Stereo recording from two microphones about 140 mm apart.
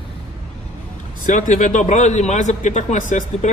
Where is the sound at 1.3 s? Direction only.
65° left (ahead or behind).